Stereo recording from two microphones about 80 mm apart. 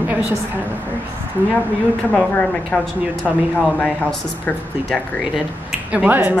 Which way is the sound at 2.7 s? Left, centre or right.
Centre.